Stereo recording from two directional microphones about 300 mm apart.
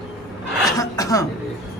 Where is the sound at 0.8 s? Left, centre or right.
Centre.